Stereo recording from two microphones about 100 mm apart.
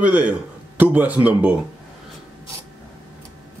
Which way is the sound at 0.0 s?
15° right (ahead or behind).